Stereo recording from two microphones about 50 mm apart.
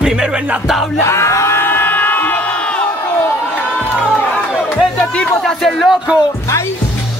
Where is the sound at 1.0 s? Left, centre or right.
Left.